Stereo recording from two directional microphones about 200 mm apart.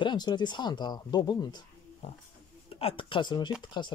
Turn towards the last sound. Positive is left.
turn(degrees=25)  # may be behind; listen again after turning